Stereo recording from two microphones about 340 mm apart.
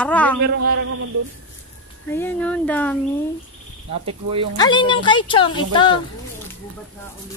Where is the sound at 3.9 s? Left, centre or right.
Centre.